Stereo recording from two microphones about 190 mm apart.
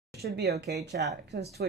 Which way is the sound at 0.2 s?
60° right (ahead or behind).